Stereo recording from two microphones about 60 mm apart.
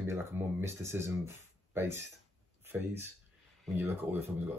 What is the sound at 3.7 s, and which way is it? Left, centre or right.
Speech, right.